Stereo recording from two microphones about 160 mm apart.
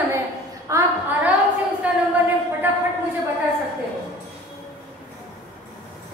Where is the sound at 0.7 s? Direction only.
20° right (ahead or behind).